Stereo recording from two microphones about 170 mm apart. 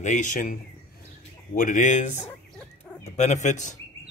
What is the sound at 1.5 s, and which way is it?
Speech, 50° left (ahead or behind).